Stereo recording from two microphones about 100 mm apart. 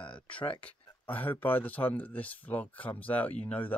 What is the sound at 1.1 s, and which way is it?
Speech, 20° left (ahead or behind).